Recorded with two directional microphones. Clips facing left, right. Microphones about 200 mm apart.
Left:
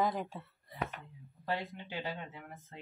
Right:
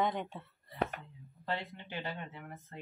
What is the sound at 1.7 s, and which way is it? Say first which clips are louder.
Speech: left 1 dB; 10° left (ahead or behind).